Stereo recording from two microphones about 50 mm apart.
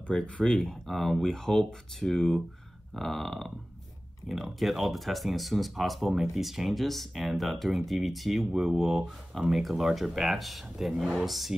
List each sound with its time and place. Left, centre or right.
0.0 s speech: left
0.8 s speech: centre